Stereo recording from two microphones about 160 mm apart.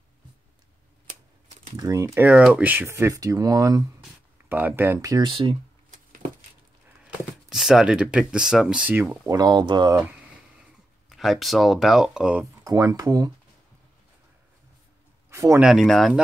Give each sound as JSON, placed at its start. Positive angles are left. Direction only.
{"t": 1.8, "sound": "speech", "side_deg": -20}
{"t": 7.0, "sound": "speech", "side_deg": 0}
{"t": 11.1, "sound": "speech", "side_deg": 0}
{"t": 12.6, "sound": "speech", "side_deg": -20}
{"t": 15.2, "sound": "a sound", "side_deg": -15}
{"t": 15.6, "sound": "speech", "side_deg": 0}